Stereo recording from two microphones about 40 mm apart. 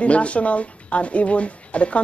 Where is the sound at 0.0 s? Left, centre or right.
Left.